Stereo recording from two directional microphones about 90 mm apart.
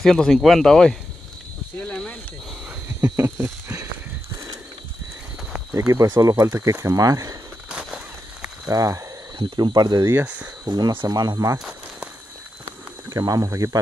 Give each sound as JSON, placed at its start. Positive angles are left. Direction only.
{"t": 0.0, "sound": "speech", "side_deg": 5}
{"t": 1.8, "sound": "a sound", "side_deg": 10}
{"t": 3.0, "sound": "speech", "side_deg": -35}
{"t": 5.7, "sound": "speech", "side_deg": -35}
{"t": 7.7, "sound": "a sound", "side_deg": -10}
{"t": 8.6, "sound": "speech", "side_deg": -40}
{"t": 9.4, "sound": "speech", "side_deg": -55}
{"t": 10.2, "sound": "speech", "side_deg": -15}
{"t": 10.6, "sound": "speech", "side_deg": -55}
{"t": 11.1, "sound": "speech", "side_deg": -50}
{"t": 12.6, "sound": "a sound", "side_deg": -40}